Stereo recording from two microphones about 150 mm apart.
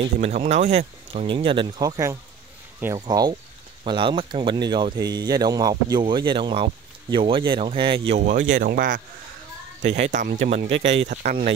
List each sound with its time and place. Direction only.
0.2 s speech: 45° right (ahead or behind)
8.3 s speech: 60° right (ahead or behind)
9.8 s speech: 50° right (ahead or behind)